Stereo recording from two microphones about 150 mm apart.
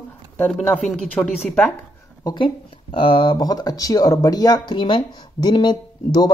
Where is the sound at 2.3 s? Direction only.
35° left (ahead or behind).